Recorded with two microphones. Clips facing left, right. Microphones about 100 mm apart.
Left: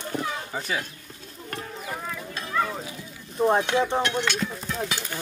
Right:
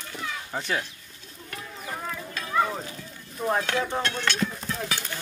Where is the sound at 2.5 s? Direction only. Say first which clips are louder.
Right 2 dB; 10° right (ahead or behind).